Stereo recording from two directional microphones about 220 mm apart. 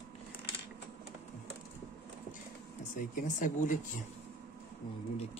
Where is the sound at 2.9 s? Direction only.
35° left (ahead or behind).